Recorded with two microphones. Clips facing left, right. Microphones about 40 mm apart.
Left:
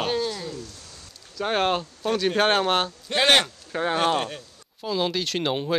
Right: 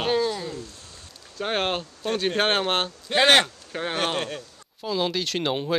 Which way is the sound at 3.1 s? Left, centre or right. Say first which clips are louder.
Right 2 dB; centre.